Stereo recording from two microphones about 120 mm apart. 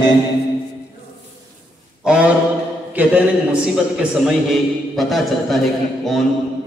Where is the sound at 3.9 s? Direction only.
5° right (ahead or behind).